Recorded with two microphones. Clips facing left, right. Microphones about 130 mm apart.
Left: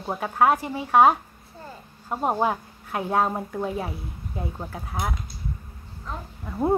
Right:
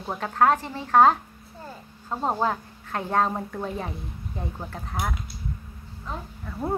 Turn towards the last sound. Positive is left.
turn(degrees=20)  # may be behind; listen again after turning